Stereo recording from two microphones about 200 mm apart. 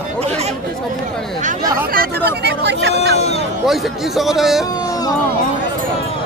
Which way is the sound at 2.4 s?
60° right (ahead or behind).